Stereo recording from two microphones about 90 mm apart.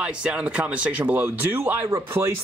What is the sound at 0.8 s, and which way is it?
Speech, 20° right (ahead or behind).